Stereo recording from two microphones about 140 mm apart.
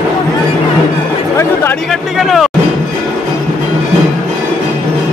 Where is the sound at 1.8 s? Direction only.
Centre (ahead or behind).